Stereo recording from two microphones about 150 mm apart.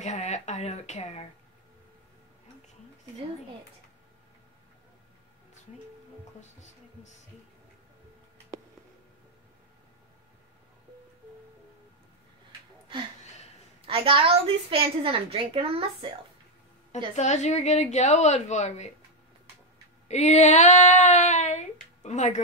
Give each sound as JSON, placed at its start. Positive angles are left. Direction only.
{"t": 0.0, "sound": "child singing", "side_deg": 50}
{"t": 13.8, "sound": "a woman's voice", "side_deg": -35}
{"t": 17.1, "sound": "child singing", "side_deg": 50}
{"t": 20.1, "sound": "child singing", "side_deg": 50}